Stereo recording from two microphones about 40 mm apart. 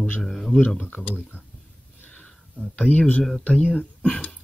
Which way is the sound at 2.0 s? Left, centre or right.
Left.